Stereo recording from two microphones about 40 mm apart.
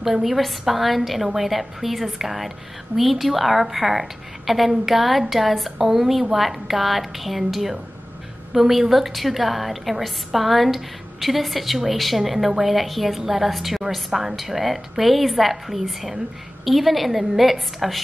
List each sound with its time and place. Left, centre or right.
0.0 s a woman's voice: centre